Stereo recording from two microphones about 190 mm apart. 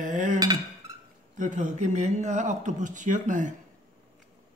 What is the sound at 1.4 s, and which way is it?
Speech, 40° right (ahead or behind).